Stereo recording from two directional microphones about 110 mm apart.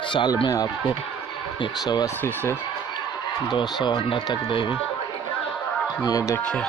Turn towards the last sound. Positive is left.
turn(degrees=10)  # may be behind; listen again after turning